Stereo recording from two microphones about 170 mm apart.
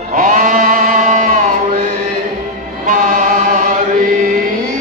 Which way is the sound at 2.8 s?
50° right (ahead or behind).